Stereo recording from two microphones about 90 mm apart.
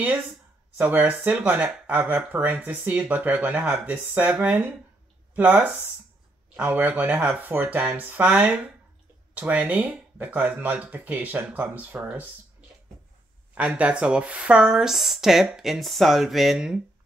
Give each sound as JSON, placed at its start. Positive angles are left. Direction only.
{"t": 0.7, "sound": "speech", "side_deg": -20}
{"t": 13.6, "sound": "speech", "side_deg": -15}